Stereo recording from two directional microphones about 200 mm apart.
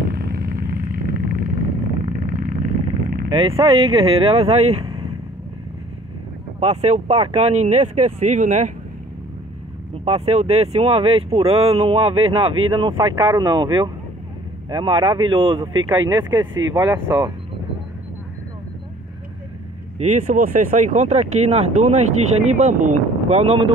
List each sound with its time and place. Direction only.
0.1 s vehicle: 45° right (ahead or behind)
3.3 s vehicle: 30° right (ahead or behind)
3.5 s speech: 20° right (ahead or behind)
6.6 s speech: 30° right (ahead or behind)
9.9 s speech: 30° right (ahead or behind)
20.0 s speech: 40° right (ahead or behind)